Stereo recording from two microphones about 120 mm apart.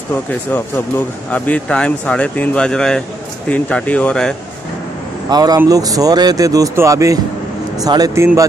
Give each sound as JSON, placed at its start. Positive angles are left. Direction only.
{"t": 0.3, "sound": "speech", "side_deg": 20}
{"t": 5.3, "sound": "speech", "side_deg": -35}